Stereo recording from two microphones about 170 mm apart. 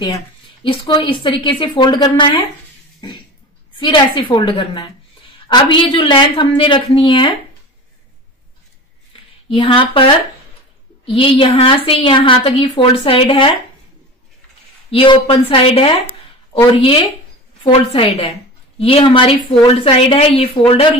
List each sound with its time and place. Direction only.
0.7 s a woman's voice: 30° left (ahead or behind)
3.7 s a woman's voice: 30° left (ahead or behind)
9.5 s a woman's voice: 30° left (ahead or behind)
14.9 s a woman's voice: 35° left (ahead or behind)